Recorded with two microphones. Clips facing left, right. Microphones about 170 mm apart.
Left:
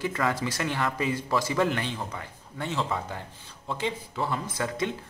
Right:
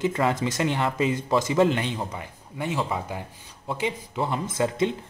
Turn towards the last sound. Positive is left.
turn(degrees=-20)  # may be behind; listen again after turning